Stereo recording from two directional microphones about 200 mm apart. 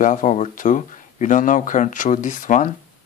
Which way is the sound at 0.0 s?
40° left (ahead or behind).